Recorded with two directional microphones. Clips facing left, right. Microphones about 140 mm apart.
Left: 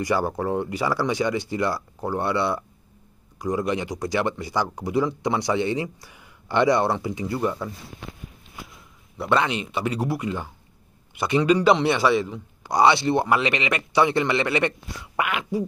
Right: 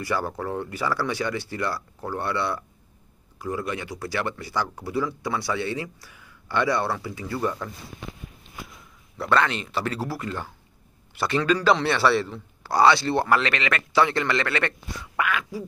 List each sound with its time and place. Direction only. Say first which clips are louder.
0.0 s a man's voice: left 4 dB; 15° left (ahead or behind)
9.2 s a man's voice: left 1 dB; 15° left (ahead or behind)